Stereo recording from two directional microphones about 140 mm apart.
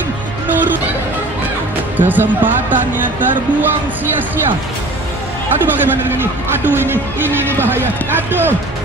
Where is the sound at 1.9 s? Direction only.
15° right (ahead or behind).